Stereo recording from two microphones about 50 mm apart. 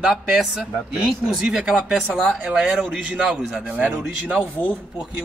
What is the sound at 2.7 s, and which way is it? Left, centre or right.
Speech, right.